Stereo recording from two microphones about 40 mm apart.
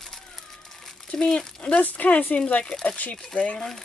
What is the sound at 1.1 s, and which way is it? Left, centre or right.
Speech, centre.